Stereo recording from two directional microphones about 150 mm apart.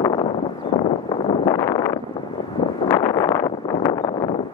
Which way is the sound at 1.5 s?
25° left (ahead or behind).